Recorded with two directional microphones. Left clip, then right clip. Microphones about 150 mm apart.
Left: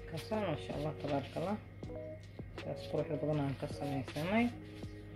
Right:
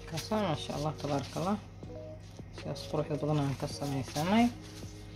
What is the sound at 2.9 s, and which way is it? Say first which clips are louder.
Speech: right 3 dB; 55° right (ahead or behind).